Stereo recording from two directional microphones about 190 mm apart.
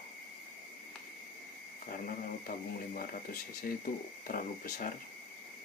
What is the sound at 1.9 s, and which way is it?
Speech, 45° left (ahead or behind).